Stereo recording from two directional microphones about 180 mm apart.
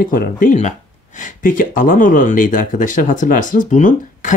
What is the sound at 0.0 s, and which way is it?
Speech, 50° left (ahead or behind).